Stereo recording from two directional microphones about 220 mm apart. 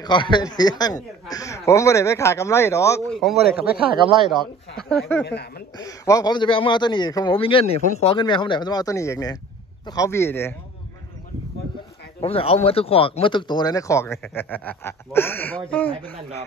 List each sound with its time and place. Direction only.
0.0 s a man's voice: 20° left (ahead or behind)
3.1 s speech: centre (ahead or behind)
5.2 s speech: 50° left (ahead or behind)
5.8 s a man's voice: 15° left (ahead or behind)
12.2 s a man's voice: 25° left (ahead or behind); by 15.9 s 5° left (ahead or behind)